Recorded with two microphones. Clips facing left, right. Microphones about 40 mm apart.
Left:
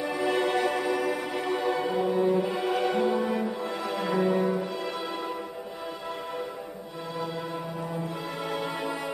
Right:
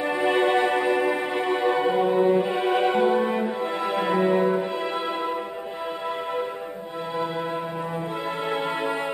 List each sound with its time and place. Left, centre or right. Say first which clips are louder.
0.0 s music: right 5 dB; right
8.5 s music: right 5 dB; right